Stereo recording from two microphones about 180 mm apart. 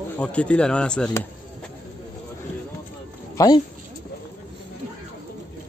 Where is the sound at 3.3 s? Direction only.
20° left (ahead or behind).